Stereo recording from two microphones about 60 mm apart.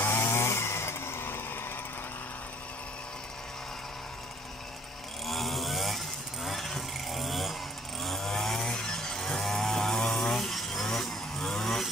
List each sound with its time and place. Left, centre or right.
0.0 s chainsaw: left
5.2 s vehicle: centre
8.0 s chainsaw: centre